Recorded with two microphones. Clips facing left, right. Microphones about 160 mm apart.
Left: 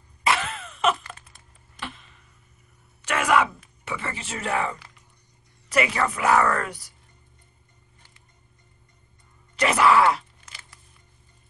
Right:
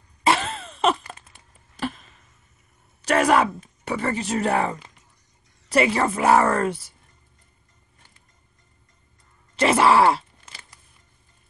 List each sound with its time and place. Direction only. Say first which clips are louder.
0.2 s a sound: right 3 dB; 30° right (ahead or behind)
5.7 s speech: right 4 dB; 30° right (ahead or behind)
9.6 s groan: right 2 dB; 30° right (ahead or behind)